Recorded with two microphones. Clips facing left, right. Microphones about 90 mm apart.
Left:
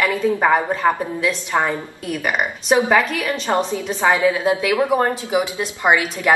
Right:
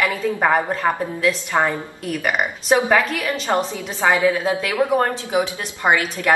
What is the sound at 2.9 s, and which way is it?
Speech, centre (ahead or behind).